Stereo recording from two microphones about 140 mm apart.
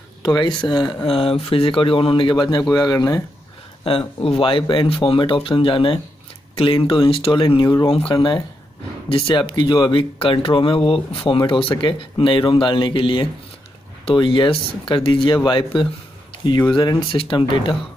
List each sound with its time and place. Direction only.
0.2 s speech: 30° left (ahead or behind)
4.2 s speech: 40° left (ahead or behind)
7.6 s speech: 25° left (ahead or behind)
8.1 s speech: 35° left (ahead or behind)